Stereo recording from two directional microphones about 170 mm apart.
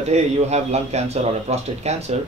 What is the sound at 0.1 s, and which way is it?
Speech, 40° right (ahead or behind).